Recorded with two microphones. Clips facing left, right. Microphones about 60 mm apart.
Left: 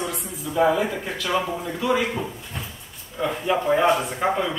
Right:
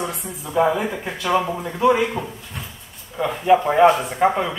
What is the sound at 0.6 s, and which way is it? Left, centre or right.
Speech, centre.